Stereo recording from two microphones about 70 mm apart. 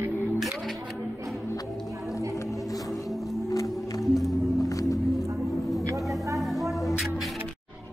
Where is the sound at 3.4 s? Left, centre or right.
Left.